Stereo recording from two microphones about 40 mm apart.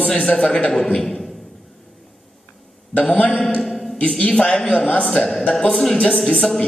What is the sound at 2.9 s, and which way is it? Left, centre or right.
Speech, left.